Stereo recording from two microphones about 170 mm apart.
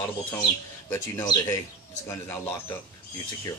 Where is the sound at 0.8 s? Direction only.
20° left (ahead or behind).